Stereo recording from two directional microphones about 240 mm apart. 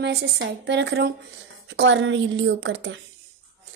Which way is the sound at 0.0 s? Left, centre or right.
Right.